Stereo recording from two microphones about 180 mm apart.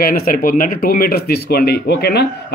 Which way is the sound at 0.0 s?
55° left (ahead or behind).